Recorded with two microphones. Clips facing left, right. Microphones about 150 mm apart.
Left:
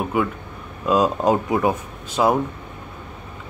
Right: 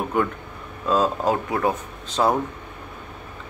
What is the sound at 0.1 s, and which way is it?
Speech, 5° left (ahead or behind).